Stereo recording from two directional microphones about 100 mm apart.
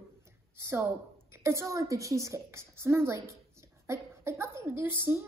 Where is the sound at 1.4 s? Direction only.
30° right (ahead or behind).